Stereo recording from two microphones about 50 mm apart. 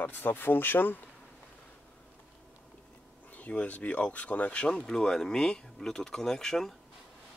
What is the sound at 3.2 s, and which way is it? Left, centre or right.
Speech, left.